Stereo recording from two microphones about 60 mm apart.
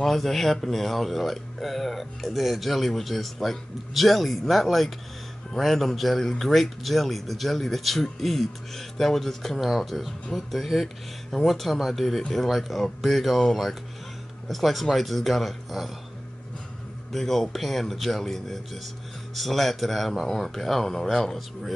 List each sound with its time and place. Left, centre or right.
0.0 s speech: centre
17.1 s speech: centre